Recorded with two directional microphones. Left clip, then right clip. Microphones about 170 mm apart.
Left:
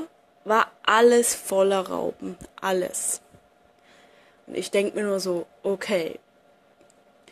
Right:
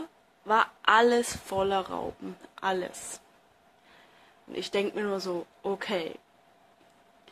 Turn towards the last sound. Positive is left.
turn(degrees=15)  # may be behind; listen again after turning